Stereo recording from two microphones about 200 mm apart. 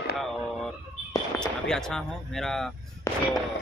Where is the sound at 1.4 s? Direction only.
5° left (ahead or behind).